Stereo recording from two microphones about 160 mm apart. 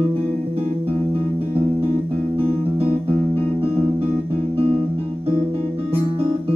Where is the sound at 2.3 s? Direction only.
35° right (ahead or behind).